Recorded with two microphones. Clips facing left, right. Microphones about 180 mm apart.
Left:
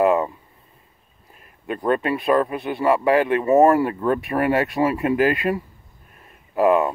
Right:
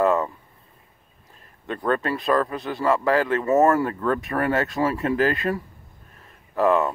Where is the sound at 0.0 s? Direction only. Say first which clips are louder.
Left 2 dB; 15° left (ahead or behind).